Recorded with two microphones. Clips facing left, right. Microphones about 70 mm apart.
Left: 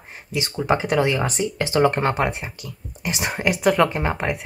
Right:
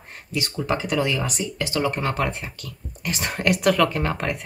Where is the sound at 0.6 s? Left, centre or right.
Left.